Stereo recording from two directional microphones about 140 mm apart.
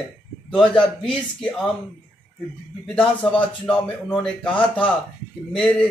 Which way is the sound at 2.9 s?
5° left (ahead or behind).